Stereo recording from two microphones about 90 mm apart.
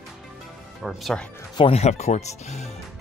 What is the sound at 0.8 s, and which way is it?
Speech, 5° right (ahead or behind).